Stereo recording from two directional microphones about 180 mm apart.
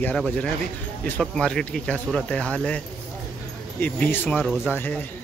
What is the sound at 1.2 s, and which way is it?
Speech, 5° left (ahead or behind).